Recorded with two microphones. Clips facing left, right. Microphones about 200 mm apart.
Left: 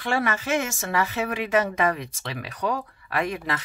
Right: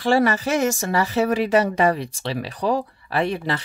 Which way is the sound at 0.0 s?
35° right (ahead or behind).